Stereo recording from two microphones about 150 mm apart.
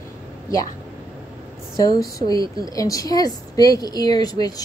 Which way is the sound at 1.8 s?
25° left (ahead or behind).